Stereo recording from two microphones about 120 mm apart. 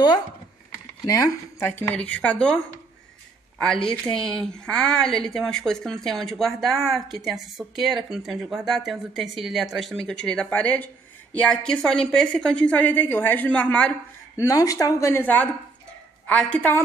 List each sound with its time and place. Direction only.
1.0 s a woman's voice: 25° left (ahead or behind); by 13.9 s 10° left (ahead or behind)
14.3 s a woman's voice: 30° left (ahead or behind); by 16.8 s 15° left (ahead or behind)